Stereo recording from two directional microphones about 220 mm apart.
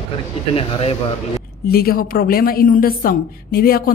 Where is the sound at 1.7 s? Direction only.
45° left (ahead or behind).